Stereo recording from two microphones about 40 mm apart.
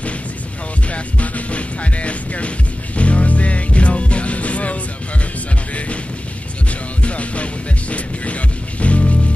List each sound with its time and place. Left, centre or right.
0.9 s music: left
7.0 s music: left
8.8 s music: left